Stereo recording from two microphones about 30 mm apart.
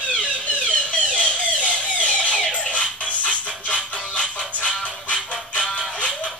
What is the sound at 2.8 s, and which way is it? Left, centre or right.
Music, left.